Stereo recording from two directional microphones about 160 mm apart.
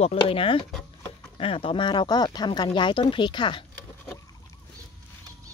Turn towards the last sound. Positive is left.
turn(degrees=30)  # may be behind; listen again after turning